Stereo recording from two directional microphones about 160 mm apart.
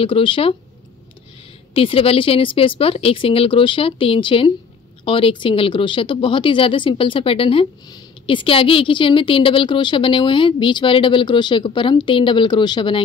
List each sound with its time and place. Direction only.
0.0 s speech: 35° left (ahead or behind)
1.7 s speech: 35° left (ahead or behind)